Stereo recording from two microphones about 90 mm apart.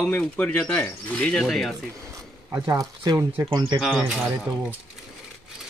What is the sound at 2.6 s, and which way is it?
Speech, 45° right (ahead or behind).